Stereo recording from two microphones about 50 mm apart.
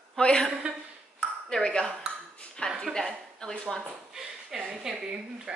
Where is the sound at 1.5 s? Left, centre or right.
Centre.